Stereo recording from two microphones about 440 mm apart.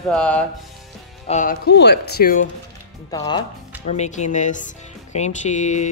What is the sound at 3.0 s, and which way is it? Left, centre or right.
Speech, centre.